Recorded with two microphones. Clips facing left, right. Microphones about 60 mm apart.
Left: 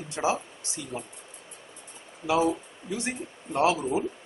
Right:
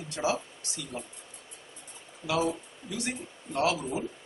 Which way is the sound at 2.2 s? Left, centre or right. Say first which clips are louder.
Left 4 dB; left.